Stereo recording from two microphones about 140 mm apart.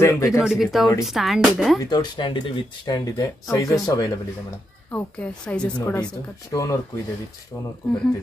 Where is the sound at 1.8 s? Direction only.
30° left (ahead or behind).